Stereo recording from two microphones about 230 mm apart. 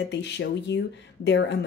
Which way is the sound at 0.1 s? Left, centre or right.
Left.